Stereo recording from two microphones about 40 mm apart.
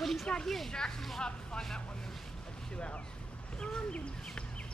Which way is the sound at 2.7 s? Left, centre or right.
Left.